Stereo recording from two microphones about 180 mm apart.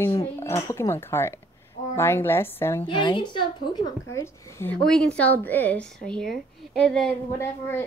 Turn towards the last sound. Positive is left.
turn(degrees=15)  # may be behind; listen again after turning